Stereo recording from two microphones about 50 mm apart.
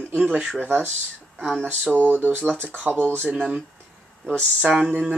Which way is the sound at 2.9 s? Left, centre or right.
Right.